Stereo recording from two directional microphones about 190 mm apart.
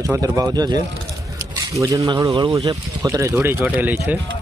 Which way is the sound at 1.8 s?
20° right (ahead or behind).